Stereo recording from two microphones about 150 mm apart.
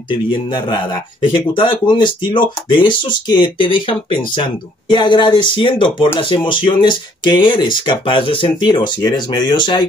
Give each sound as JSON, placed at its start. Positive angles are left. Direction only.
{"t": 0.5, "sound": "speech", "side_deg": 30}